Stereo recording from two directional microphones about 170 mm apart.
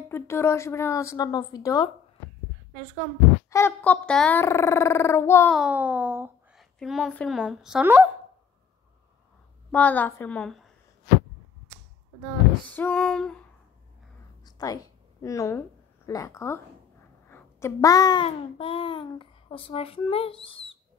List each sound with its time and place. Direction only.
0.1 s speech: 15° left (ahead or behind)
3.4 s speech: 15° left (ahead or behind)
5.5 s speech: 5° right (ahead or behind)
6.5 s a woman's voice: centre (ahead or behind)
9.7 s speech: 10° left (ahead or behind)
12.6 s speech: 10° left (ahead or behind)
14.4 s a sound: 20° left (ahead or behind)
16.1 s a child's voice: 20° left (ahead or behind)